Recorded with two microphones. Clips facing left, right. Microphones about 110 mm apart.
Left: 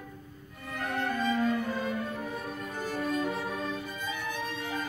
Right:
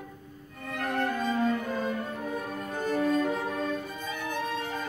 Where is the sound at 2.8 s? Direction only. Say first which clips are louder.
Right 5 dB; 55° right (ahead or behind).